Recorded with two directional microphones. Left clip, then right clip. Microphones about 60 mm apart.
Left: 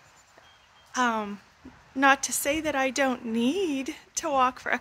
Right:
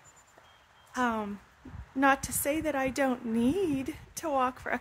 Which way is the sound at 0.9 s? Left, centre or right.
Right.